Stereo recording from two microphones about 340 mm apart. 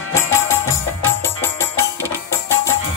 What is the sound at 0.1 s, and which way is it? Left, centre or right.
Music, centre.